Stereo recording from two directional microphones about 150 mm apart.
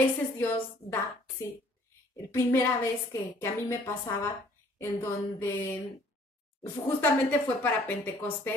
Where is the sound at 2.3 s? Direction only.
15° left (ahead or behind).